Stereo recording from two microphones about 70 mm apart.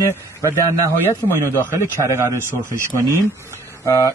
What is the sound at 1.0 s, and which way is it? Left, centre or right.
Speech, left.